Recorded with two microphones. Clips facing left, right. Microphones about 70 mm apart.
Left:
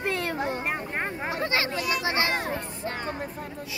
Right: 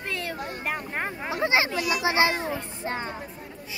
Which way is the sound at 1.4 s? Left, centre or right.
Centre.